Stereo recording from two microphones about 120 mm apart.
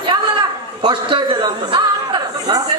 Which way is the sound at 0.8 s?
40° right (ahead or behind).